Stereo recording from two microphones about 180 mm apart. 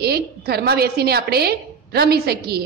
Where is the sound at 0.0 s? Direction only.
60° right (ahead or behind).